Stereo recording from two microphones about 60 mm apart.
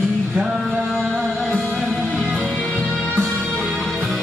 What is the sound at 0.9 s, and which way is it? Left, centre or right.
Music, centre.